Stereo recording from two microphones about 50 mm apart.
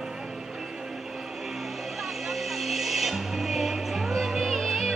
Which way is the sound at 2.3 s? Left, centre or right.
Centre.